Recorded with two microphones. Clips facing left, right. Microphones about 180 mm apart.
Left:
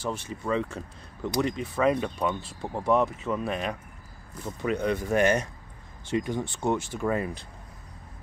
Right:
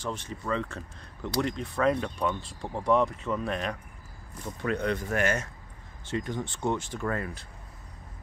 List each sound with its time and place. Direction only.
0.0 s speech: 10° left (ahead or behind)
5.1 s speech: 20° left (ahead or behind)